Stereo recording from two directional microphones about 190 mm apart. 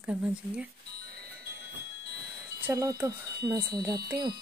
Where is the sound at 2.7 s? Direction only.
15° right (ahead or behind).